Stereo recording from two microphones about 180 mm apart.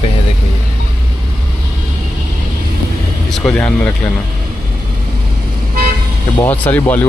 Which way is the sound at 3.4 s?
Centre (ahead or behind).